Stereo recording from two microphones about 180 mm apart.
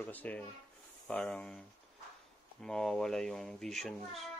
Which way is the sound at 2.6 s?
5° left (ahead or behind).